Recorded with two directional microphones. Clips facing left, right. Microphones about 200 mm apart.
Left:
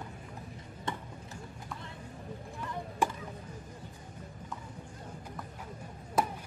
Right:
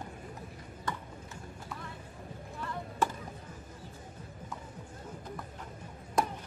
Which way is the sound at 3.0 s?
15° left (ahead or behind).